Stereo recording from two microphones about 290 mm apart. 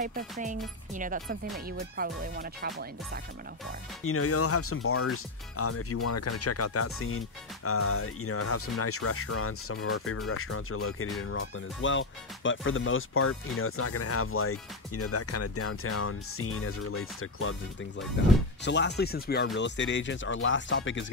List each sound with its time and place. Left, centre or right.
0.0 s speech: right
4.0 s speech: left